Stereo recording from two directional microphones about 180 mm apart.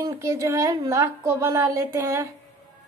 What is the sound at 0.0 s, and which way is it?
A woman's voice, 20° right (ahead or behind).